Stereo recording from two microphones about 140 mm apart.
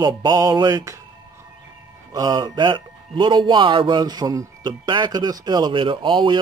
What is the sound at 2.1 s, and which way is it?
A man's voice, 30° right (ahead or behind).